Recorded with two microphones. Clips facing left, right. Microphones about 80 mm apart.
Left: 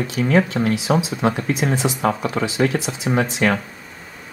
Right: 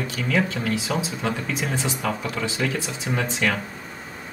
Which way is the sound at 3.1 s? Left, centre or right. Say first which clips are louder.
Left 5 dB; left.